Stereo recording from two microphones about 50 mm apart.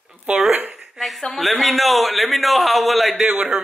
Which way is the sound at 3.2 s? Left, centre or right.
Right.